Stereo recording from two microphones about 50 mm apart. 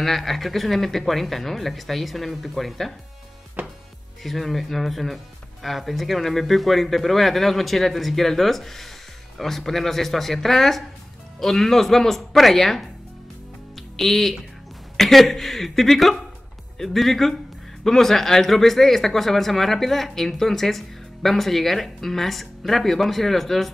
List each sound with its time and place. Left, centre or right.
0.0 s speech: centre
3.6 s music: right
4.2 s speech: centre